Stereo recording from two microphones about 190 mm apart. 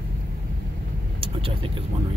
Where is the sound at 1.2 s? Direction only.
30° right (ahead or behind).